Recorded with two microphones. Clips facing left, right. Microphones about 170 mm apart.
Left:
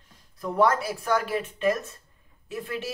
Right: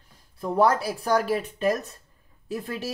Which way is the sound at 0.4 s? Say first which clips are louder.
Right 1 dB; 30° right (ahead or behind).